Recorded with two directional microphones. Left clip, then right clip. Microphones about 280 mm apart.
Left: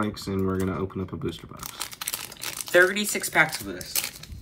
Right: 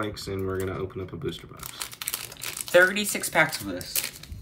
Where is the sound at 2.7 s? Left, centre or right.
Centre.